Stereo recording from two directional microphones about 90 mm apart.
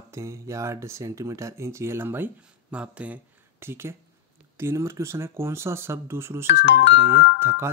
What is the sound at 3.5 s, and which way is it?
Speech, 25° right (ahead or behind).